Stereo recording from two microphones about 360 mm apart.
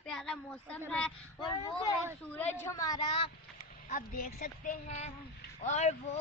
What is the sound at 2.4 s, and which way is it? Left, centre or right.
Speech, centre.